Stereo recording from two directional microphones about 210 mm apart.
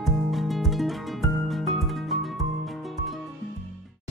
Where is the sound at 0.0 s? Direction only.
Centre (ahead or behind).